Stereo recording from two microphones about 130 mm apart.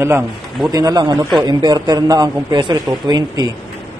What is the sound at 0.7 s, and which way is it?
A man's voice, 30° right (ahead or behind).